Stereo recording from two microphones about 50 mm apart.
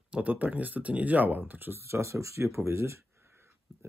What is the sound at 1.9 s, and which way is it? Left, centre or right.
Speech, right.